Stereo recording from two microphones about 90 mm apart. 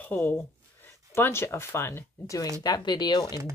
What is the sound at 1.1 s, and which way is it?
Speech, 25° left (ahead or behind).